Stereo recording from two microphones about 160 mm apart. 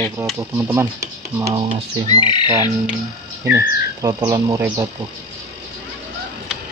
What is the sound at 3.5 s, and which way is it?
Speech, 20° right (ahead or behind).